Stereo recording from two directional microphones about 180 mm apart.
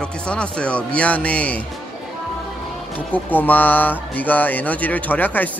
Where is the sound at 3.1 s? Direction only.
10° left (ahead or behind).